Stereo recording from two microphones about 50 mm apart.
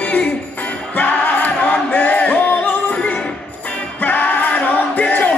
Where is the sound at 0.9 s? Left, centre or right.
Left.